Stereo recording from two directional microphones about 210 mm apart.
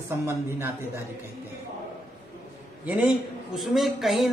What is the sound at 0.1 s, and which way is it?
Speech, 10° right (ahead or behind).